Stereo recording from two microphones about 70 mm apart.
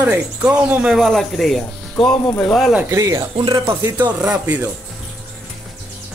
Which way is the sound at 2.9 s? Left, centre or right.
Right.